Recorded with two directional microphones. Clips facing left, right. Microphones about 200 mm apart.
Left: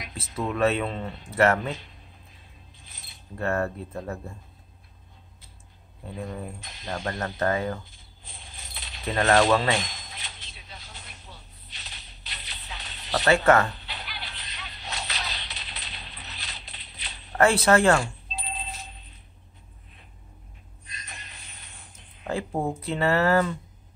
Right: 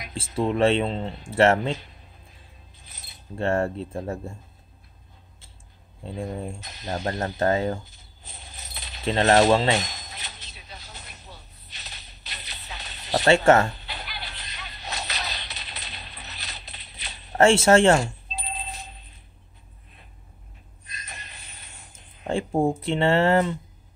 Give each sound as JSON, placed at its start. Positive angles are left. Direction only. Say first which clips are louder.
{"t": 0.1, "sound": "speech", "louder": "right 6 dB", "side_deg": -30}
{"t": 3.3, "sound": "speech", "louder": "right 3 dB", "side_deg": -25}
{"t": 6.0, "sound": "speech", "louder": "right 3 dB", "side_deg": -25}
{"t": 6.6, "sound": "speech", "louder": "right 3 dB", "side_deg": -40}
{"t": 7.1, "sound": "speech", "louder": "right 3 dB", "side_deg": -25}
{"t": 8.3, "sound": "a sound", "louder": "right 2 dB", "side_deg": -40}
{"t": 9.0, "sound": "speech", "louder": "right 3 dB", "side_deg": -25}
{"t": 9.8, "sound": "a sound", "louder": "right 2 dB", "side_deg": -40}
{"t": 13.2, "sound": "speech", "louder": "right 2 dB", "side_deg": -30}
{"t": 13.8, "sound": "a sound", "louder": "right 2 dB", "side_deg": -40}
{"t": 17.4, "sound": "speech", "louder": "right 3 dB", "side_deg": -25}
{"t": 20.9, "sound": "a sound", "louder": "right 2 dB", "side_deg": -40}
{"t": 22.2, "sound": "speech", "louder": "right 5 dB", "side_deg": -25}